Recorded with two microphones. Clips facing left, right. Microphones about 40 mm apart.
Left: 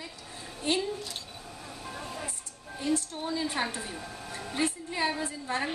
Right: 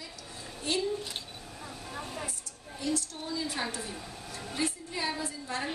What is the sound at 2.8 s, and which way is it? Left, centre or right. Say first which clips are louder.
A woman's voice: left 3 dB; left.